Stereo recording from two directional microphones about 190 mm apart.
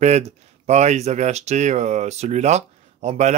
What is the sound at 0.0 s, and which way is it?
Speech, 35° right (ahead or behind).